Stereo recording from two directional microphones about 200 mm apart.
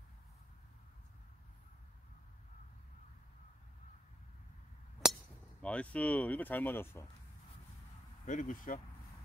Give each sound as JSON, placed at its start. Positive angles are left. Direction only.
{"t": 5.0, "sound": "chink", "side_deg": -5}
{"t": 5.6, "sound": "speech", "side_deg": 5}
{"t": 8.3, "sound": "speech", "side_deg": 40}